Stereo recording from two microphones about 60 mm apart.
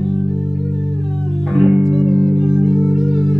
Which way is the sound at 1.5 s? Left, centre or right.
Centre.